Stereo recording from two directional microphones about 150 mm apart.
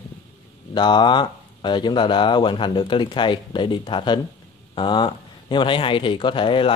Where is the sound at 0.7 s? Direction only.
30° left (ahead or behind).